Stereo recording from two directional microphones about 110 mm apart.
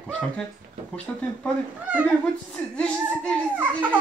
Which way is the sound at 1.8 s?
15° right (ahead or behind).